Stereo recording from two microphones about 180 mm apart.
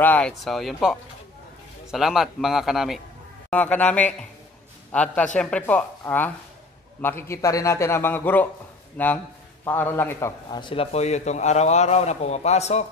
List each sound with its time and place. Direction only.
0.0 s a man's voice: 5° left (ahead or behind)
10.5 s a man's voice: 30° left (ahead or behind)